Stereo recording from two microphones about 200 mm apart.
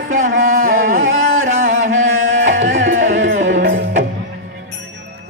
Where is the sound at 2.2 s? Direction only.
70° right (ahead or behind).